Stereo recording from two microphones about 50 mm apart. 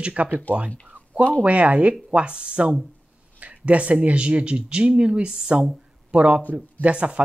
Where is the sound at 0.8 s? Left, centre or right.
Right.